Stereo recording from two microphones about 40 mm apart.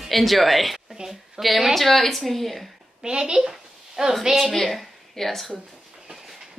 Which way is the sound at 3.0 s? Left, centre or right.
Centre.